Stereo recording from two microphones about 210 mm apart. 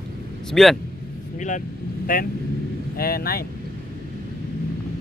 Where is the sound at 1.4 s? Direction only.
35° left (ahead or behind).